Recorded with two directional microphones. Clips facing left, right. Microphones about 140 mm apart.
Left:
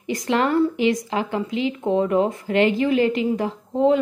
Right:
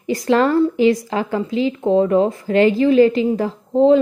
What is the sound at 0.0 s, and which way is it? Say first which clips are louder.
A woman's voice: right 5 dB; 35° right (ahead or behind).